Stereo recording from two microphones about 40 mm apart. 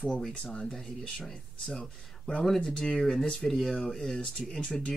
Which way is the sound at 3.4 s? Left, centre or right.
Centre.